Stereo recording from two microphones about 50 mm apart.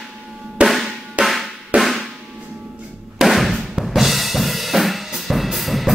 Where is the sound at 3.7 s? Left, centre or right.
Centre.